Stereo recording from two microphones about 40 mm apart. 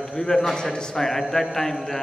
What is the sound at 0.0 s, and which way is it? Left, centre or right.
A man's voice, centre.